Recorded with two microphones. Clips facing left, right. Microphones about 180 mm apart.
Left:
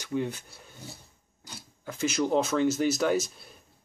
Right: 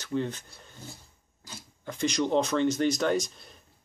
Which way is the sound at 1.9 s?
5° left (ahead or behind).